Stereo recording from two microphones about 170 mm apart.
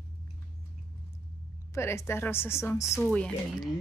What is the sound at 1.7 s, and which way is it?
A woman's voice, 15° left (ahead or behind).